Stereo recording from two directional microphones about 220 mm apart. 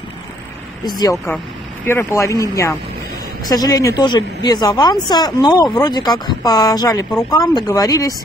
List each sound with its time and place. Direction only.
0.8 s speech: 15° left (ahead or behind)